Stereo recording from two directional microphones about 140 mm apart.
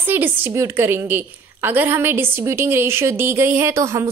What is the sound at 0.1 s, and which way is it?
A woman's voice, 15° right (ahead or behind).